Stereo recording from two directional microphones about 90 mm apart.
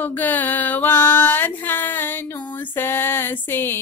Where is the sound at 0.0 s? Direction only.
20° left (ahead or behind).